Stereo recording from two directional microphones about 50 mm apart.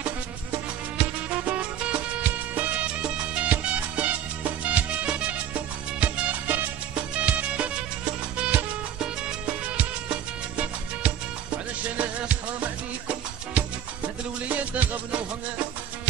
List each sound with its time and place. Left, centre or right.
0.9 s music: right
11.0 s music: right